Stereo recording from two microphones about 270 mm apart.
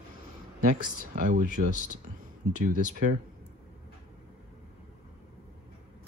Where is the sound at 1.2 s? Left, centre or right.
Right.